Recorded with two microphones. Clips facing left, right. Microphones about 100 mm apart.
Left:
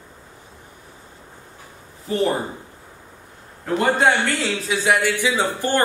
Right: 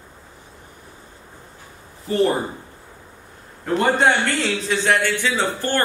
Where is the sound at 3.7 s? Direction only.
Centre (ahead or behind).